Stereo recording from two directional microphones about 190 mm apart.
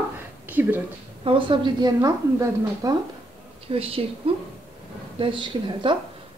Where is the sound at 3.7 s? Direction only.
30° right (ahead or behind).